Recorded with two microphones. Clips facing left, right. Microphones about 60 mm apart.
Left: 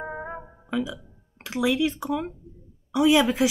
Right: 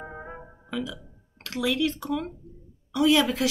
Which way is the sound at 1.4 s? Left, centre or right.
Centre.